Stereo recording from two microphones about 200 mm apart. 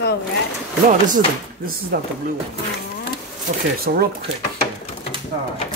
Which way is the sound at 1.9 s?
50° right (ahead or behind).